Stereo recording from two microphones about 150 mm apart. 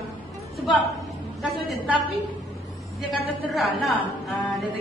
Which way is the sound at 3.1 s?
Centre (ahead or behind).